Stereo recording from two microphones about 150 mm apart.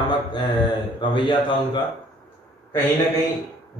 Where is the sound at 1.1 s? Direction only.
30° left (ahead or behind).